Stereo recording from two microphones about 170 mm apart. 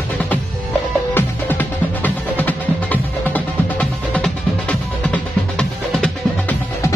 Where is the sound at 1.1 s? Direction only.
10° left (ahead or behind).